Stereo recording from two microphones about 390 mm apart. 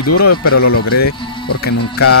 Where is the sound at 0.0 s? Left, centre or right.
Left.